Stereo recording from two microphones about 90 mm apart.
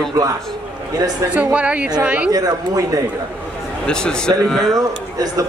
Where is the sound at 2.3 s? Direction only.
45° right (ahead or behind).